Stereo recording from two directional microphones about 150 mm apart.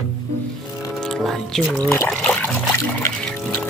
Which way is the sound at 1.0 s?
5° left (ahead or behind).